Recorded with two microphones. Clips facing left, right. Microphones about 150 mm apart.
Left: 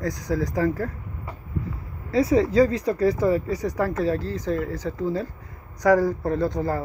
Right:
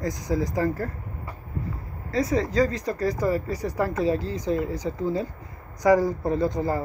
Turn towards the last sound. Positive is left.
turn(degrees=-10)  # may be behind; listen again after turning